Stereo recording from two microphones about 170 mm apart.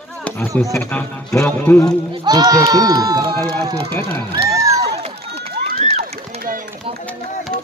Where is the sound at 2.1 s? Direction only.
25° right (ahead or behind).